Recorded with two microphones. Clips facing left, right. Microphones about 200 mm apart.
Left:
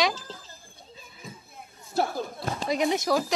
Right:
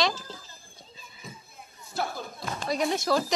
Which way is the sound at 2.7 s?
20° left (ahead or behind).